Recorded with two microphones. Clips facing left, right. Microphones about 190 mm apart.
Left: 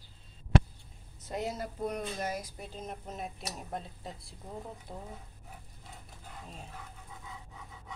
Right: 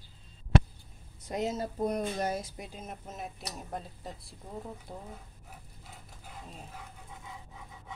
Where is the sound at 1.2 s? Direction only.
20° right (ahead or behind).